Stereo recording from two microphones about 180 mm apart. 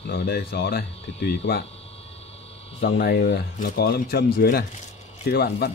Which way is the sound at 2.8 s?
75° left (ahead or behind).